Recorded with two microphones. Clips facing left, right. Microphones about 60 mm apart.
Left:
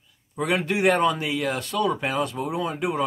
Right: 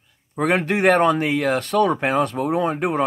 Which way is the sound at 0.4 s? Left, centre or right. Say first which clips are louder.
Right 4 dB; right.